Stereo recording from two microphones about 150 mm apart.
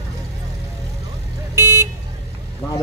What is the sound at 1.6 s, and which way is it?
Vehicle, 20° right (ahead or behind).